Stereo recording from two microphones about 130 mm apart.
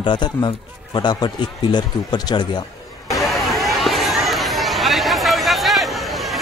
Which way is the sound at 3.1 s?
Centre (ahead or behind).